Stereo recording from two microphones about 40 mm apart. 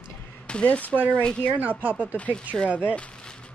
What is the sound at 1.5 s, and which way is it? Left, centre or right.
Speech, right.